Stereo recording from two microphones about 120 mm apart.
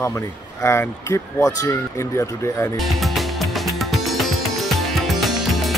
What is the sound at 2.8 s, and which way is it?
Music, centre (ahead or behind).